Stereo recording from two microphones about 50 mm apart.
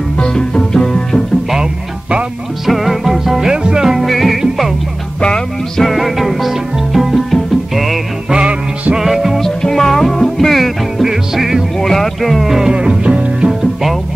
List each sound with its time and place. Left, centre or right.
0.2 s music: centre
1.5 s music: centre
2.6 s music: centre
3.9 s music: centre
5.8 s music: centre
8.3 s music: centre
8.9 s music: centre
9.6 s music: centre
11.8 s music: centre
12.7 s music: centre